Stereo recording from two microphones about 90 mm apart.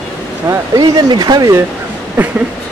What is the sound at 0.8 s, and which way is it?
Speech, 50° right (ahead or behind).